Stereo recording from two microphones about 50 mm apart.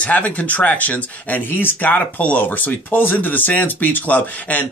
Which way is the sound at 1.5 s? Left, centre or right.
Left.